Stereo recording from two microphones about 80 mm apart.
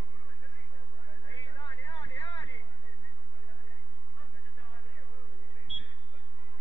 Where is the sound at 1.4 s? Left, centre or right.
Left.